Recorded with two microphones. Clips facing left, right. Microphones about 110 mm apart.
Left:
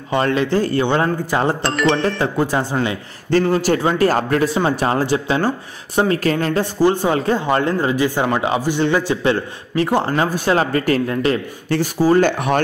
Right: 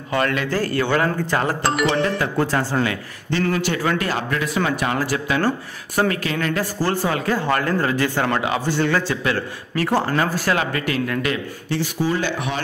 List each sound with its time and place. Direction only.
0.1 s a man's voice: 30° left (ahead or behind)
1.0 s speech: 10° left (ahead or behind)
1.6 s speech: 10° right (ahead or behind)
2.3 s speech: 15° left (ahead or behind)
3.4 s a man's voice: 35° left (ahead or behind)
6.1 s speech: 40° left (ahead or behind)
6.8 s a man's voice: 20° left (ahead or behind)
10.5 s speech: 35° left (ahead or behind)